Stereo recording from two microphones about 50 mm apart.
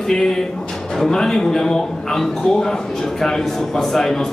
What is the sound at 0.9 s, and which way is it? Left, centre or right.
A man's voice, centre.